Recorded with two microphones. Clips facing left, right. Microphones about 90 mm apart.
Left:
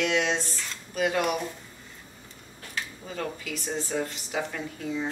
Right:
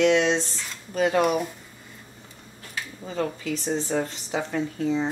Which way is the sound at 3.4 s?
35° right (ahead or behind).